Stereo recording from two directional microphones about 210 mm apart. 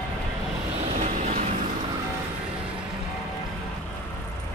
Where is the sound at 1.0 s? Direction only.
35° right (ahead or behind).